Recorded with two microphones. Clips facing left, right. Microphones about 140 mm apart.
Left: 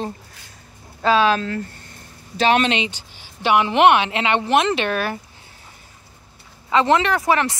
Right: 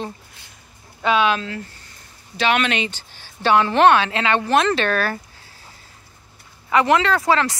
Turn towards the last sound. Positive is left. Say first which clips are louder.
# even
turn(degrees=20)  # may be behind; listen again after turning